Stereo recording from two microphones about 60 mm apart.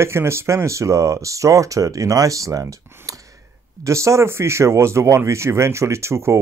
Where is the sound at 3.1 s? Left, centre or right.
Right.